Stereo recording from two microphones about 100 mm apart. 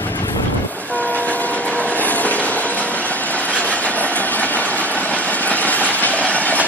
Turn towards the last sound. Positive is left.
turn(degrees=15)  # may be behind; listen again after turning